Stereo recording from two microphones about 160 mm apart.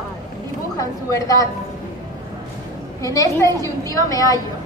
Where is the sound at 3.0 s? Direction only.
20° left (ahead or behind).